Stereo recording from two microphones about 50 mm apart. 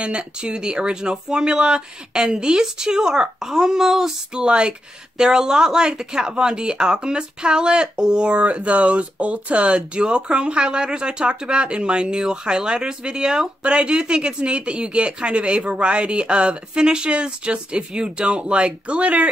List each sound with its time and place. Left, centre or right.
0.0 s speech: right